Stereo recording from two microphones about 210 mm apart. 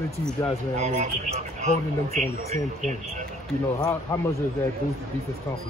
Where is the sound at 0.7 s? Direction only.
35° right (ahead or behind).